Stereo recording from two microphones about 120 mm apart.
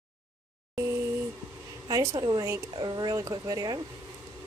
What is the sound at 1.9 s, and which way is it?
Speech, 35° right (ahead or behind).